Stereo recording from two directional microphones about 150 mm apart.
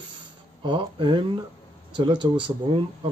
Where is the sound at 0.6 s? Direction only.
30° right (ahead or behind).